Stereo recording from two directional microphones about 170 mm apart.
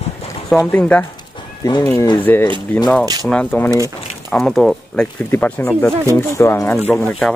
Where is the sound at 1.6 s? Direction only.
20° left (ahead or behind).